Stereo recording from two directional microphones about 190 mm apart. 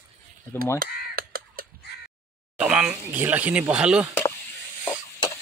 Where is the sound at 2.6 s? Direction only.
5° right (ahead or behind).